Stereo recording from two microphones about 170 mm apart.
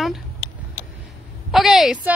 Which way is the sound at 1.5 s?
Centre (ahead or behind).